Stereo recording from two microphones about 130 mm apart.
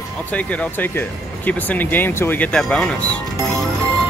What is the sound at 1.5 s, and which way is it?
Speech, 15° left (ahead or behind).